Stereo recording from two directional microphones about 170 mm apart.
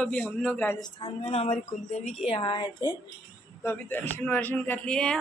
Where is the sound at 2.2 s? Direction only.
30° left (ahead or behind).